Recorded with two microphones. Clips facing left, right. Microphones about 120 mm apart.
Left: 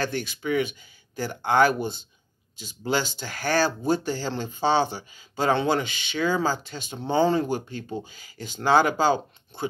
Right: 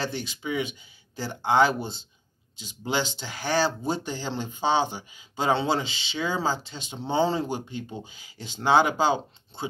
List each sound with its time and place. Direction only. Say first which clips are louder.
0.2 s speech: left 4 dB; 20° right (ahead or behind)